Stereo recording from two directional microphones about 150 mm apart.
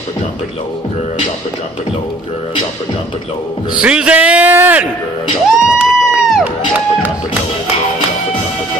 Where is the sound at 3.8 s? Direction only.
5° right (ahead or behind).